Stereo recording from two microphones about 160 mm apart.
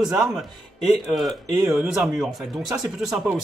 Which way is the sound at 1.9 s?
Centre (ahead or behind).